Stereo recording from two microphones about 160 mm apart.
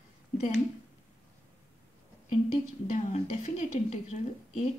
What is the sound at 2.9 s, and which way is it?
Speech, 45° left (ahead or behind).